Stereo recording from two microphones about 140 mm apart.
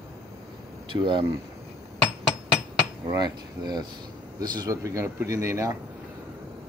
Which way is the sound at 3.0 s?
30° right (ahead or behind).